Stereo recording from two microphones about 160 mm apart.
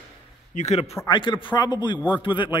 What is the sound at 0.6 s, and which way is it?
Speech, 40° left (ahead or behind).